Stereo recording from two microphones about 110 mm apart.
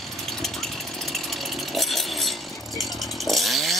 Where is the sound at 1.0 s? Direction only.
Centre (ahead or behind).